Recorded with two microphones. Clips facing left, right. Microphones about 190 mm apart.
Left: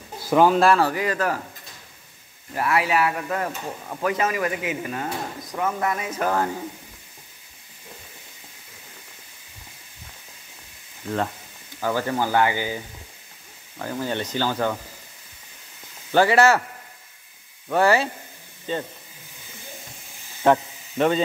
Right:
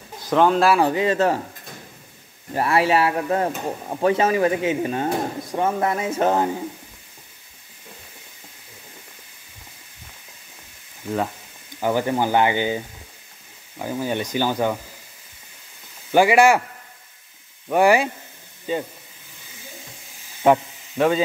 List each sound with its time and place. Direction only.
0.2 s speech: 5° left (ahead or behind)
0.7 s speech: 20° right (ahead or behind)
2.5 s speech: 30° right (ahead or behind)
11.1 s speech: 5° right (ahead or behind)
16.1 s speech: 15° right (ahead or behind)
17.6 s speech: 15° right (ahead or behind)
20.4 s speech: 5° right (ahead or behind)